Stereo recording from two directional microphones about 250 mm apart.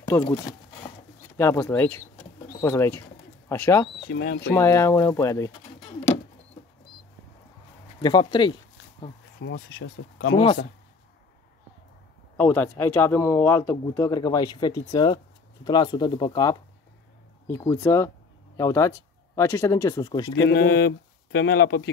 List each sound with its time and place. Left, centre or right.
0.2 s a sound: centre
1.4 s speech: centre
4.1 s speech: left
4.5 s speech: centre
8.0 s speech: centre
9.4 s speech: left
10.3 s speech: left
12.4 s speech: centre
20.4 s speech: left